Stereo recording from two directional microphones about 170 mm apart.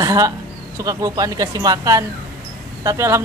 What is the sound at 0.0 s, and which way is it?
Speech, 20° right (ahead or behind).